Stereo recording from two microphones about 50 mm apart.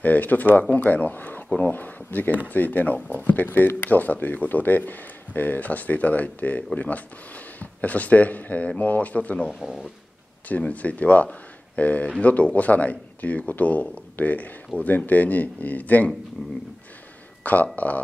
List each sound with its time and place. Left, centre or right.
0.0 s speech: left
3.4 s speech: left
9.5 s speech: centre
10.6 s speech: left
17.4 s a sound: left
17.7 s speech: left